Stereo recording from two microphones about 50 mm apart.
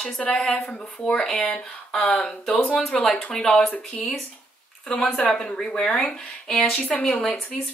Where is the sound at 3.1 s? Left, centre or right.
Centre.